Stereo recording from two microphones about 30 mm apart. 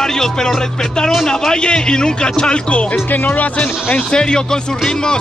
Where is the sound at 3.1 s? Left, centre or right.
Left.